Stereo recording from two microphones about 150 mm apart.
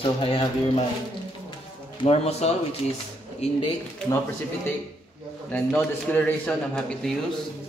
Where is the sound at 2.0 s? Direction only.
45° left (ahead or behind).